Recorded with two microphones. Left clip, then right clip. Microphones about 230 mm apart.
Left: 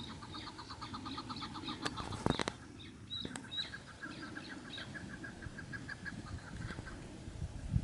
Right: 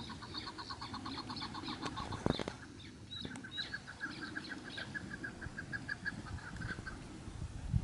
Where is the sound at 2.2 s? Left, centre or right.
Centre.